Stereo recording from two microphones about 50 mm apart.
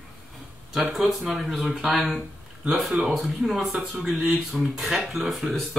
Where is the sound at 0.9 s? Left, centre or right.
Centre.